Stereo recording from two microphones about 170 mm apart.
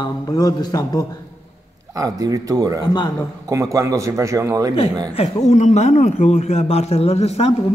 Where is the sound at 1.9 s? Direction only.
20° right (ahead or behind).